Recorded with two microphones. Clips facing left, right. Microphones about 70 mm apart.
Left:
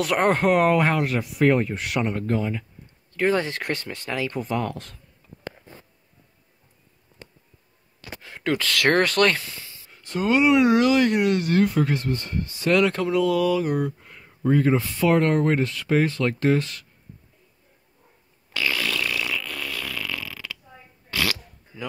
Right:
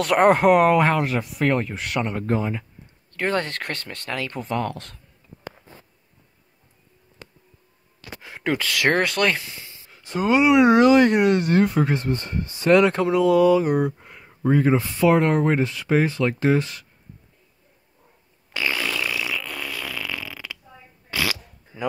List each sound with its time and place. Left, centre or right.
0.2 s speech: centre
2.2 s speech: centre
3.2 s speech: centre
8.2 s speech: centre
10.0 s speech: centre
10.6 s speech: right
18.5 s fart: right
21.7 s a sound: right